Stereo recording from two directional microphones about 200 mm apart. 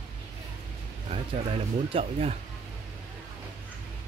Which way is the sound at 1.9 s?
30° right (ahead or behind).